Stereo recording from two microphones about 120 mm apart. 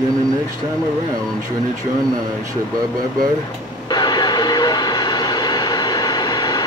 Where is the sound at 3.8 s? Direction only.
35° left (ahead or behind).